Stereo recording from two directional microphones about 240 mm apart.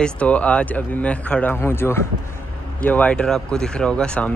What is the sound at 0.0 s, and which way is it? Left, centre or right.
A man's voice, centre.